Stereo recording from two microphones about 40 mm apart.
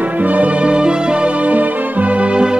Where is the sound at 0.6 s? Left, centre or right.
Right.